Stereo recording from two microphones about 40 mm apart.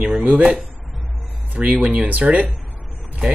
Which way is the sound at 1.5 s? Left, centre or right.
Right.